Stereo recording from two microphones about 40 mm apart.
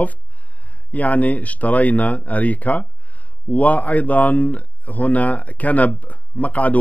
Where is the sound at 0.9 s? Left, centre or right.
Left.